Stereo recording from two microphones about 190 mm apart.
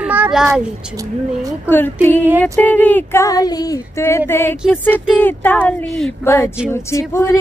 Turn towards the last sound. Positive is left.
turn(degrees=15)  # may be behind; listen again after turning